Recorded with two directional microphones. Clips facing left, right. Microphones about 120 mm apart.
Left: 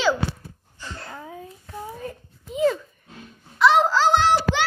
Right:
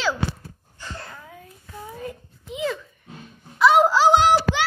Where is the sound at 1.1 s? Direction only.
25° left (ahead or behind).